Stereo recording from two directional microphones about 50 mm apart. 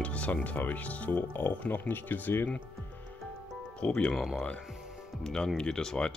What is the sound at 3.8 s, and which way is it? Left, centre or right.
Speech, centre.